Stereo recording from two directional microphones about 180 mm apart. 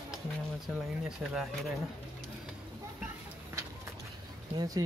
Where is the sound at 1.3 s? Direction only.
Centre (ahead or behind).